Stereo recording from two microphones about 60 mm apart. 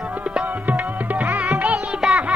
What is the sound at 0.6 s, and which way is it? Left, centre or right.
Music, right.